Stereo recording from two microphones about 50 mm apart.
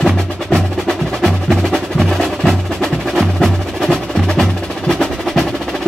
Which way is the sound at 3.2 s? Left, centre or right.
Centre.